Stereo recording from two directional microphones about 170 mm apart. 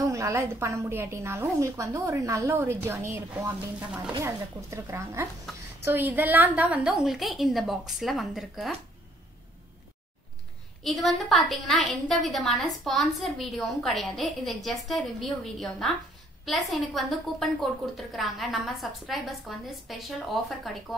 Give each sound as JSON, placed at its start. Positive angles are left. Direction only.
{"t": 0.0, "sound": "a woman's voice", "side_deg": -20}
{"t": 10.8, "sound": "a woman's voice", "side_deg": 0}